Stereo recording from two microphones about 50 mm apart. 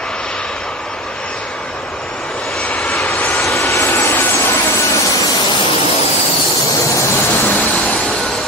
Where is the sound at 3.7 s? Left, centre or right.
Left.